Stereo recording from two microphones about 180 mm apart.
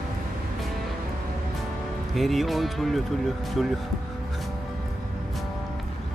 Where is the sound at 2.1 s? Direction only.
Centre (ahead or behind).